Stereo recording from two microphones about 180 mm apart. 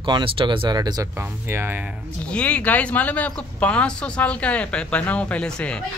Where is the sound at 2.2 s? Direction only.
5° left (ahead or behind).